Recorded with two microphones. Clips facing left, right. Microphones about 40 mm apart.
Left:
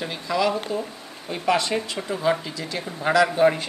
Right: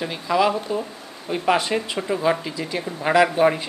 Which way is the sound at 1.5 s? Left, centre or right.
Right.